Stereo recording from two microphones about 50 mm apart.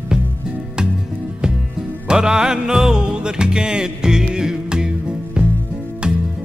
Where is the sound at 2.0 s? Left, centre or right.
Centre.